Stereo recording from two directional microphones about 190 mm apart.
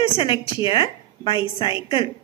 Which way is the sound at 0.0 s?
25° left (ahead or behind).